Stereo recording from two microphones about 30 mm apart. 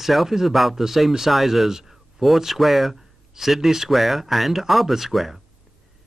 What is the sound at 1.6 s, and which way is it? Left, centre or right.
Speech, centre.